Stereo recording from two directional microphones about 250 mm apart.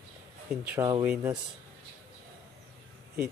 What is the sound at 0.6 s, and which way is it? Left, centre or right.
Speech, centre.